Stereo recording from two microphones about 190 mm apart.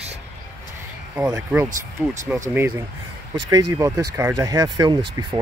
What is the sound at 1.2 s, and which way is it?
Speech, 15° right (ahead or behind).